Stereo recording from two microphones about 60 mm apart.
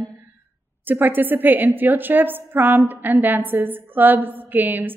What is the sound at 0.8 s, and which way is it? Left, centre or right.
A woman's voice, right.